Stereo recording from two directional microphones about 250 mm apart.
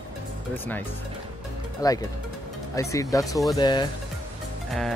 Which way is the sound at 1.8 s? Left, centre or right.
Centre.